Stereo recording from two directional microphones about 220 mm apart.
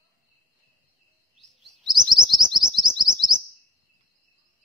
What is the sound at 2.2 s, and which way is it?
Chirp, 20° right (ahead or behind).